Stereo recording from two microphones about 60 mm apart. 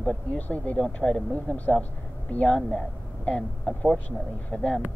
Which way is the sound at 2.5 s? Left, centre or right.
Centre.